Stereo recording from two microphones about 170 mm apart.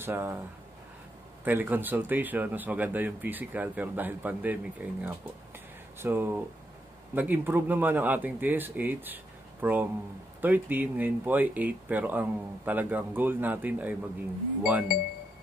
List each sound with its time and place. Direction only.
0.0 s a man's voice: 15° right (ahead or behind)
1.4 s a man's voice: 10° right (ahead or behind)